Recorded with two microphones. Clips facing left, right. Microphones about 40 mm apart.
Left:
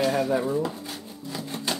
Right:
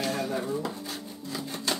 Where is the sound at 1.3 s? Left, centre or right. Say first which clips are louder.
Left 1 dB; centre.